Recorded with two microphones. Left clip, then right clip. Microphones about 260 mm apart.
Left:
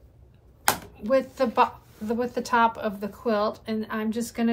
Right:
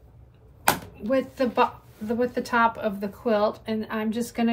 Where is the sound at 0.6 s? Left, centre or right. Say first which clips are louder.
Right 2 dB; centre.